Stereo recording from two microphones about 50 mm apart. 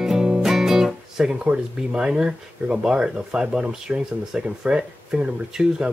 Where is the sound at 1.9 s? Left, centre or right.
Centre.